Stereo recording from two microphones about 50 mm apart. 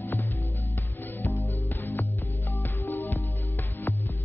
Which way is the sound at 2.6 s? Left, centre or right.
Left.